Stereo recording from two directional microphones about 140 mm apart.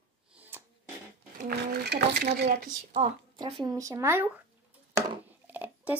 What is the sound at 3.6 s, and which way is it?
Speech, 25° right (ahead or behind).